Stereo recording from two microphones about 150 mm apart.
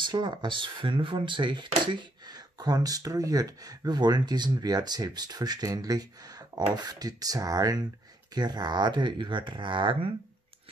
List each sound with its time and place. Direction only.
0.0 s speech: 30° right (ahead or behind)